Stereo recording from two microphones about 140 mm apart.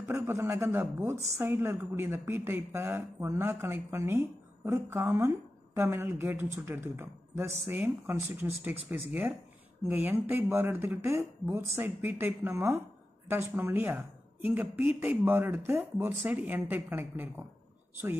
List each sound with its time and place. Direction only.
0.1 s a man's voice: 20° right (ahead or behind)